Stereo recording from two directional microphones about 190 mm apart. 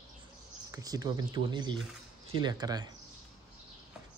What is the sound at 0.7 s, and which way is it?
Speech, 20° right (ahead or behind).